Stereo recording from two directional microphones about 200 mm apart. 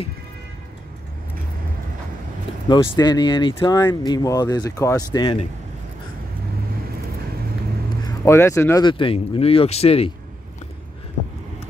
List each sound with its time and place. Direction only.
2.7 s speech: 20° left (ahead or behind)
8.0 s speech: 15° left (ahead or behind); by 10.1 s 30° left (ahead or behind)